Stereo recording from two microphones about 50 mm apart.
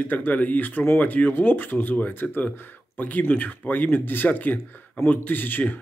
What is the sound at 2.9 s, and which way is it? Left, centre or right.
Speech, left.